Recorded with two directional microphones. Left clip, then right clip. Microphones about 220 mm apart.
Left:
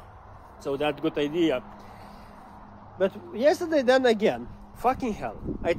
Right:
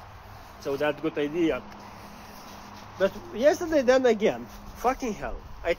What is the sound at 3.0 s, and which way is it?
Speech, 20° left (ahead or behind).